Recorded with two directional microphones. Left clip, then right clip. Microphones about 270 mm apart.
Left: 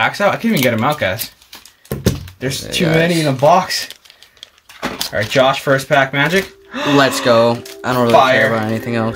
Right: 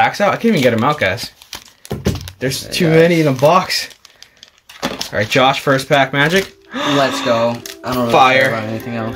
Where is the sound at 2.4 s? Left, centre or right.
Centre.